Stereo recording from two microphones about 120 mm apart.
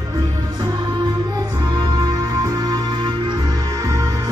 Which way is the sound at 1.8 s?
35° right (ahead or behind).